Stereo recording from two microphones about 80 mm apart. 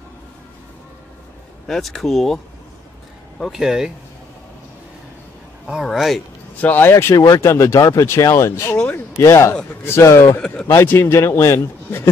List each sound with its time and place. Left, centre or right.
1.7 s speech: centre
3.4 s speech: centre
5.7 s speech: centre
6.6 s a man's voice: left
10.4 s a man's voice: centre
10.7 s a man's voice: left